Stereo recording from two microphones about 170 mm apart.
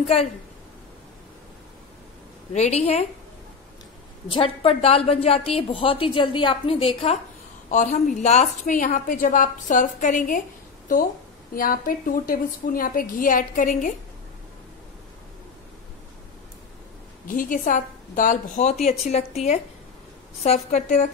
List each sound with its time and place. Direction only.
2.5 s a woman's voice: 40° left (ahead or behind)
4.3 s a woman's voice: 35° left (ahead or behind)
7.7 s a woman's voice: 50° left (ahead or behind)
11.5 s a woman's voice: 55° left (ahead or behind)
17.3 s a woman's voice: 50° left (ahead or behind)